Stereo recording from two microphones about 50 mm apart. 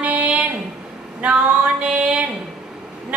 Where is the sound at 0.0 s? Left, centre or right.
Right.